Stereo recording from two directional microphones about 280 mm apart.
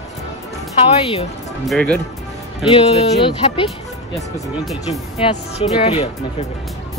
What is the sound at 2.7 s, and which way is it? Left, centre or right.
Speech, left.